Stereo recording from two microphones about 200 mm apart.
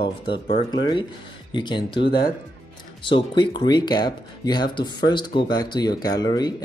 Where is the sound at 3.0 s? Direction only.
25° left (ahead or behind).